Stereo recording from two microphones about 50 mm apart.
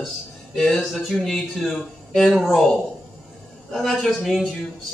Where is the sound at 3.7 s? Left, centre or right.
Centre.